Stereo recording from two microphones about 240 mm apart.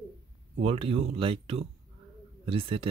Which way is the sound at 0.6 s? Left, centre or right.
Right.